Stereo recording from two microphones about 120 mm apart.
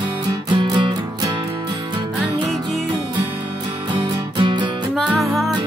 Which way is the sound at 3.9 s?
45° right (ahead or behind).